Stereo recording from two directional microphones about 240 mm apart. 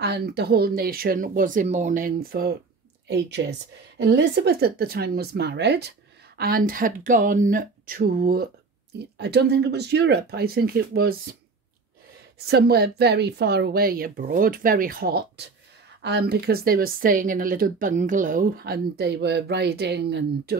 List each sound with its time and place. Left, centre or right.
0.0 s speech: right
12.4 s speech: right